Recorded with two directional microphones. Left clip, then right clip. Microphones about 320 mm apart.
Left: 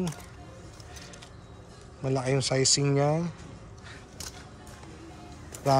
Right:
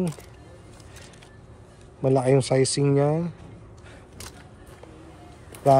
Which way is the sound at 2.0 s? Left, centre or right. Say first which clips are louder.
Right 8 dB; centre.